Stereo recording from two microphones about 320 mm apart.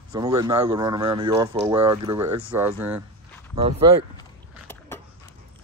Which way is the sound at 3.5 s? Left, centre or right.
Centre.